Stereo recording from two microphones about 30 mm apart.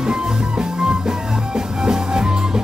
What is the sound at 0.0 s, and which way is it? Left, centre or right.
Music, right.